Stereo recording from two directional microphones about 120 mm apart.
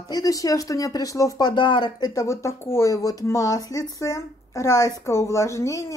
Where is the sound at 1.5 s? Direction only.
40° left (ahead or behind).